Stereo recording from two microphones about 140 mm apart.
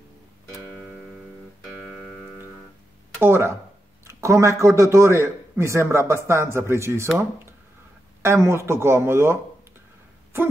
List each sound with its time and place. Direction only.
0.5 s music: centre (ahead or behind)
3.2 s a man's voice: 20° right (ahead or behind)
8.2 s a man's voice: 20° right (ahead or behind)